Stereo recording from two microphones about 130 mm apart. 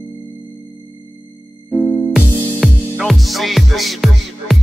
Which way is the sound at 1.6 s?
Centre (ahead or behind).